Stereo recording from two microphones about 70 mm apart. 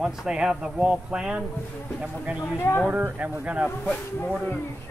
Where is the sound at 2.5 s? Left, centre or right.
Left.